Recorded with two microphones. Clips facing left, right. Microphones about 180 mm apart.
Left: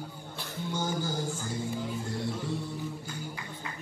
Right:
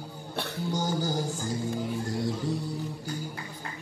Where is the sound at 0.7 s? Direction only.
40° right (ahead or behind).